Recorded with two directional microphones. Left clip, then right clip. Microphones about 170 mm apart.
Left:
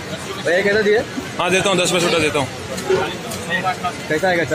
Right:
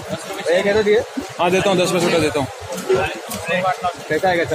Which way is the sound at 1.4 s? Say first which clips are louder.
Even; centre (ahead or behind).